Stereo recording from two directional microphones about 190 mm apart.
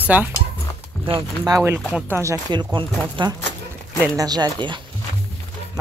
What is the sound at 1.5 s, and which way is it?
Speech, 10° right (ahead or behind).